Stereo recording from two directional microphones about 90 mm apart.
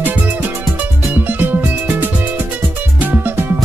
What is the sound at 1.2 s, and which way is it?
Music, 20° right (ahead or behind).